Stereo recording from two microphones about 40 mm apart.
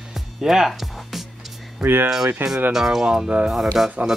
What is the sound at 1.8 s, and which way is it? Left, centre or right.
Speech, right.